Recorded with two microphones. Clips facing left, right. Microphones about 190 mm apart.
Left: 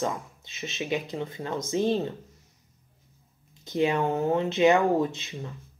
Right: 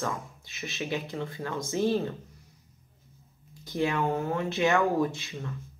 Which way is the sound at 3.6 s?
20° left (ahead or behind).